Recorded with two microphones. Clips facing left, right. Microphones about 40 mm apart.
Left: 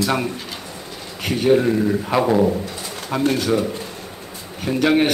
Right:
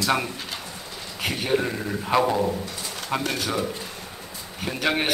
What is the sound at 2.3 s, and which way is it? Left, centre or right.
Speech, centre.